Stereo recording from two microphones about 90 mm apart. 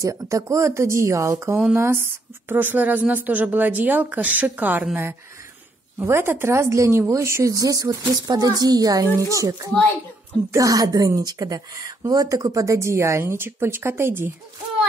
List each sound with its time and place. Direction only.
0.0 s a woman's voice: 35° right (ahead or behind); by 4.8 s 20° right (ahead or behind)
5.9 s a woman's voice: 25° right (ahead or behind)